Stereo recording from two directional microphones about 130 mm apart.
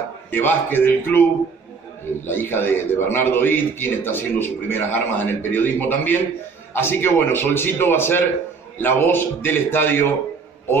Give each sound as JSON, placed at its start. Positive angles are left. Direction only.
{"t": 0.3, "sound": "a man's voice", "side_deg": 15}
{"t": 2.2, "sound": "a man's voice", "side_deg": 15}